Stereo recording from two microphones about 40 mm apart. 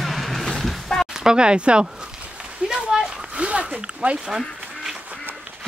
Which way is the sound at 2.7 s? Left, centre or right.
Centre.